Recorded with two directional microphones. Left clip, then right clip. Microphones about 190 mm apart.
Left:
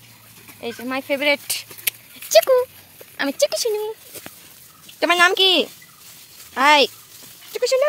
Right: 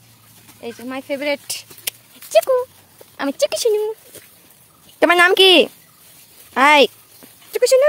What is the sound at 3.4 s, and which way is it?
Speech, 45° right (ahead or behind).